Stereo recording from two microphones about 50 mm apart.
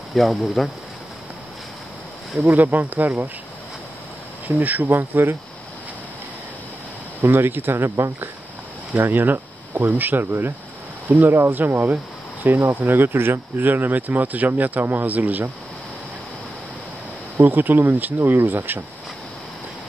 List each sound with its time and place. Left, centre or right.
0.2 s speech: centre
2.4 s speech: right
4.5 s speech: right
7.2 s speech: right
8.9 s speech: right
17.4 s speech: right